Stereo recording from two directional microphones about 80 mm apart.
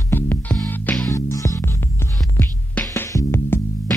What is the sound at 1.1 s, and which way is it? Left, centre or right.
Music, left.